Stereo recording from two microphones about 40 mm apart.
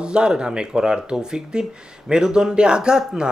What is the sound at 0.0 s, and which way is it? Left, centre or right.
A man's voice, right.